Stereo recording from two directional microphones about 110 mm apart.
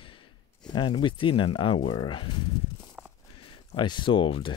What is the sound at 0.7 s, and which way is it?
Speech, 50° left (ahead or behind).